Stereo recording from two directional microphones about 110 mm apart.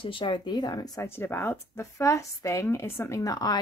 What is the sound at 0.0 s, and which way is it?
Speech, 50° left (ahead or behind).